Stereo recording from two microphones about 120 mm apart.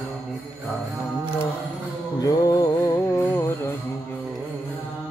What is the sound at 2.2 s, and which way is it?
Music, 30° left (ahead or behind).